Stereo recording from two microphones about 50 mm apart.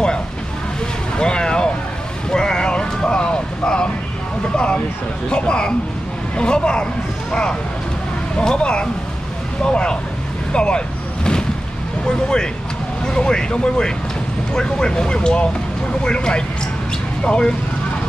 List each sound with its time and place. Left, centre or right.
1.1 s vehicle: centre
2.3 s a sound: centre
5.3 s speech: centre
12.1 s speech: centre